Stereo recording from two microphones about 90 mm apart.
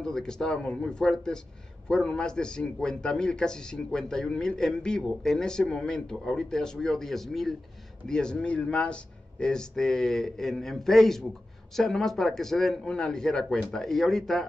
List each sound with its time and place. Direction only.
0.0 s a man's voice: 5° left (ahead or behind)